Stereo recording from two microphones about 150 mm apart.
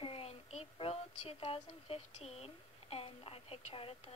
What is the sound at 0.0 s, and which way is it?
A woman's voice, 40° left (ahead or behind).